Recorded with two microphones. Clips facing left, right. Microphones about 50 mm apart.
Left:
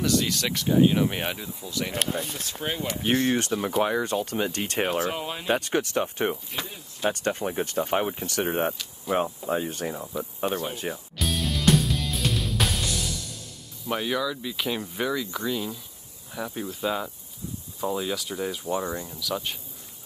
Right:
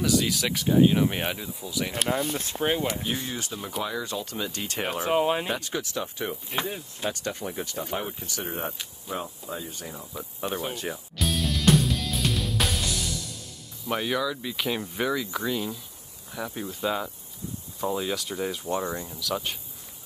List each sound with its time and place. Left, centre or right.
0.0 s speech: centre
2.2 s speech: right
3.0 s speech: left
3.8 s speech: left
5.0 s speech: right
5.5 s speech: left
6.5 s speech: right
7.1 s speech: left
10.7 s music: centre
13.8 s speech: centre